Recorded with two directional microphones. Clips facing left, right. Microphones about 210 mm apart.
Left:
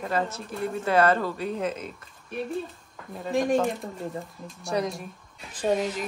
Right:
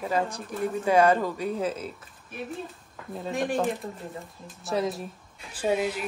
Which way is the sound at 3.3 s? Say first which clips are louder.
Left 3 dB; centre (ahead or behind).